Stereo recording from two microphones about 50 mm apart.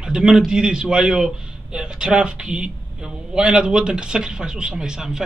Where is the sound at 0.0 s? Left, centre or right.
Centre.